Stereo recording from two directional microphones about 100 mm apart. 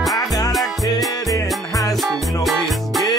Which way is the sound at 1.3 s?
35° left (ahead or behind).